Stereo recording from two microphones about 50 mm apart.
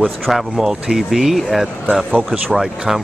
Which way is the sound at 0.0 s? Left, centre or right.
Centre.